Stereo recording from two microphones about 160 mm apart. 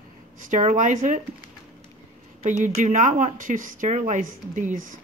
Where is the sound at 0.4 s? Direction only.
50° right (ahead or behind).